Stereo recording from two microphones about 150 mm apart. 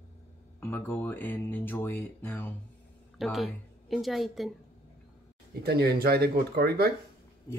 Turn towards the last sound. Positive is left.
turn(degrees=20)  # may be behind; listen again after turning